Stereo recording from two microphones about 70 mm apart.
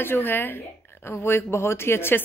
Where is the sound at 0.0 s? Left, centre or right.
Left.